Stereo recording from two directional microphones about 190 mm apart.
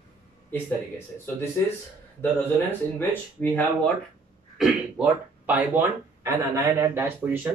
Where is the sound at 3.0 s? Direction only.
10° left (ahead or behind).